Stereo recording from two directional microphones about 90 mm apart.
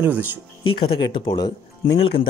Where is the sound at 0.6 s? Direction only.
75° left (ahead or behind); by 1.5 s 55° left (ahead or behind).